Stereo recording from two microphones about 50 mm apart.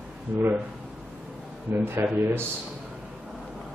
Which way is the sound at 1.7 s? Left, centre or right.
Right.